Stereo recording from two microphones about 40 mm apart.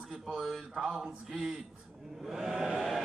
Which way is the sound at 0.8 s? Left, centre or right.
Centre.